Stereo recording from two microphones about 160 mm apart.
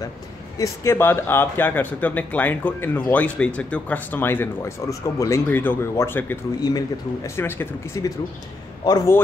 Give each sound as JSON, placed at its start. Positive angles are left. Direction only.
{"t": 0.6, "sound": "speech", "side_deg": 15}
{"t": 6.6, "sound": "a man's voice", "side_deg": 25}